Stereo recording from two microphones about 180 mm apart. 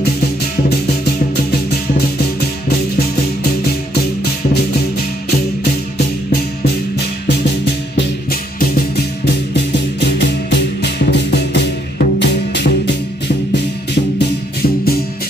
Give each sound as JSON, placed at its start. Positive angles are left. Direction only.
{"t": 8.3, "sound": "music", "side_deg": 55}